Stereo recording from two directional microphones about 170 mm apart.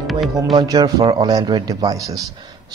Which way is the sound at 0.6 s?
20° right (ahead or behind).